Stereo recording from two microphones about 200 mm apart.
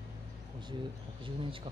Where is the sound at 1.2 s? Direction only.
25° right (ahead or behind).